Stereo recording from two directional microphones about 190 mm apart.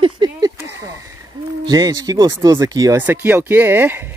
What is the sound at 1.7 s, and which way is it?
Speech, 20° right (ahead or behind).